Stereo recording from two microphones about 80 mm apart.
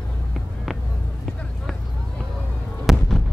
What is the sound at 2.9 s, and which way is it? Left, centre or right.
Fireworks, centre.